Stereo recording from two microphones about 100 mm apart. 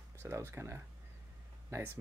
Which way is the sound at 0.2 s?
25° right (ahead or behind).